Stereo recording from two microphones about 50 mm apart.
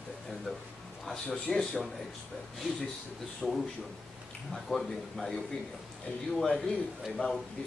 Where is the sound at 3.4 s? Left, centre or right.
Centre.